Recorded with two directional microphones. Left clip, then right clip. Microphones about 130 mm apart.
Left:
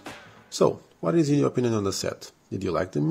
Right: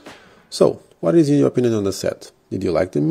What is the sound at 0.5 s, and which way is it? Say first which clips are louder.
Speech: right 6 dB; 40° right (ahead or behind).